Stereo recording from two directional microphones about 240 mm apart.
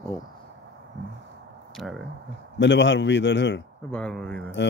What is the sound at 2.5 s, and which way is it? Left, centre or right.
A man's voice, left.